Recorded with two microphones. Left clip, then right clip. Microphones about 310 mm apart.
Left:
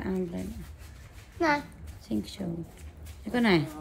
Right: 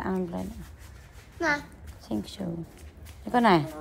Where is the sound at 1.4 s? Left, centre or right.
Centre.